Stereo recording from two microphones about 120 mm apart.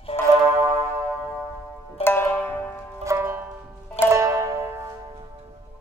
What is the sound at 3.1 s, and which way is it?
Music, 20° right (ahead or behind).